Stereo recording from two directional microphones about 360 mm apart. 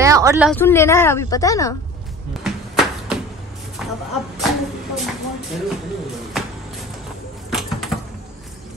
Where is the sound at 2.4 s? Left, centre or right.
Centre.